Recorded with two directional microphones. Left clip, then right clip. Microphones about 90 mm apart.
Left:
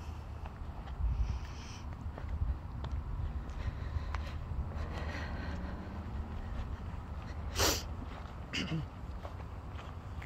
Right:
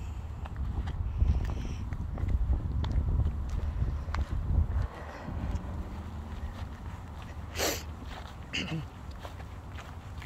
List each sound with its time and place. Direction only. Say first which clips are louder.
5.1 s vehicle: right 1 dB; 35° left (ahead or behind)
7.5 s sneeze: even; 20° left (ahead or behind)
8.5 s a sound: right 3 dB; 15° left (ahead or behind)